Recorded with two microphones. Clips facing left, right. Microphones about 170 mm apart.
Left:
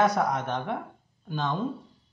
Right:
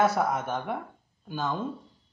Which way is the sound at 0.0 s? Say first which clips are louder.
Left 1 dB; 5° right (ahead or behind).